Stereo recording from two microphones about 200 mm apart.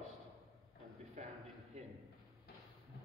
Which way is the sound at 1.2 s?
40° right (ahead or behind).